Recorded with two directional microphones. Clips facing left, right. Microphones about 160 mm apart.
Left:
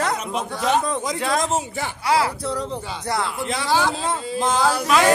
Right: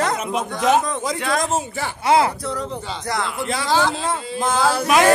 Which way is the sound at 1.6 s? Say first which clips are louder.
Right 1 dB; 20° left (ahead or behind).